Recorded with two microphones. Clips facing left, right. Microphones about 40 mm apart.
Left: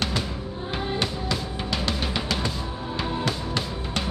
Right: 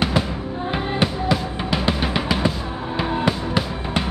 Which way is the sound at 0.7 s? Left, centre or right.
Centre.